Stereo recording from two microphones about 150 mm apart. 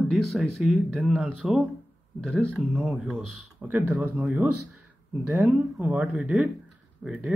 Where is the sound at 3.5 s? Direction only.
10° right (ahead or behind).